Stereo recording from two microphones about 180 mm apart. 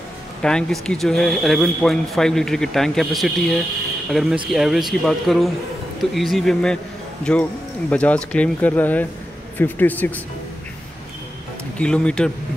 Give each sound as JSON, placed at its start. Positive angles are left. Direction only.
{"t": 0.4, "sound": "speech", "side_deg": 5}
{"t": 11.8, "sound": "speech", "side_deg": 5}